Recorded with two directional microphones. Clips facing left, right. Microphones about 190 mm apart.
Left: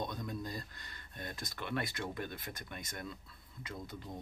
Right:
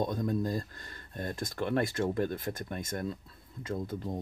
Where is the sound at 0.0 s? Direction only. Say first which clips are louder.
Right 10 dB; 45° right (ahead or behind).